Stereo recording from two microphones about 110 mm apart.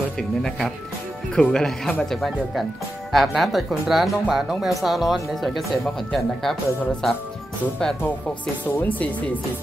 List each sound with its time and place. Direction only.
0.2 s speech: 5° left (ahead or behind)
8.6 s speech: 15° left (ahead or behind)